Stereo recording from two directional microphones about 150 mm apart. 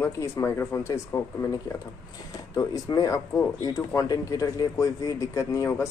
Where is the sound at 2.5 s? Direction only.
25° left (ahead or behind).